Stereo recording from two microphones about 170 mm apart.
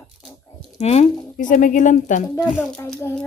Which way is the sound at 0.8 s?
40° left (ahead or behind).